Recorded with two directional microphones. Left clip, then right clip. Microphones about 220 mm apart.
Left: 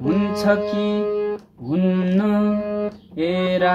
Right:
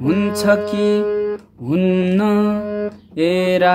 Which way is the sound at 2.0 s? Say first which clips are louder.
Right 4 dB; 50° right (ahead or behind).